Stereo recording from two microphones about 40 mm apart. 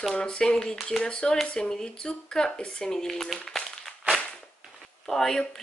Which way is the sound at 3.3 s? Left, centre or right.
Centre.